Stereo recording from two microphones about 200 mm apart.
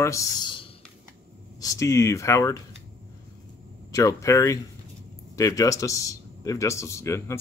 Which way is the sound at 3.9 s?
15° left (ahead or behind).